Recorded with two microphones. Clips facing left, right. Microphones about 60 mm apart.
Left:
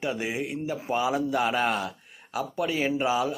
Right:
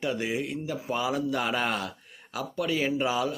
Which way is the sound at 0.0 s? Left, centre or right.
Centre.